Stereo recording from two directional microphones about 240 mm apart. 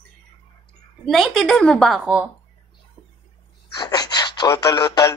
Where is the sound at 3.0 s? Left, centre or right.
Centre.